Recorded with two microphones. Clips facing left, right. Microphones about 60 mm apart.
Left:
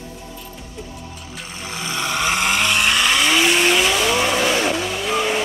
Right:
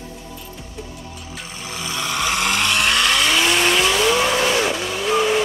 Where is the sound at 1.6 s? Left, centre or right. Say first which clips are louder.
Left 2 dB; left.